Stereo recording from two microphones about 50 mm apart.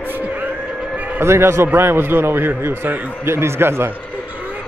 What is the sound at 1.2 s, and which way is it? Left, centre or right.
Speech, right.